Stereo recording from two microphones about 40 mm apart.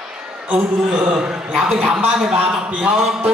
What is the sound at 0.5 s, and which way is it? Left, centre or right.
Speech, right.